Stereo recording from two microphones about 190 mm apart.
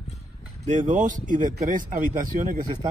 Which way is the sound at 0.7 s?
40° right (ahead or behind).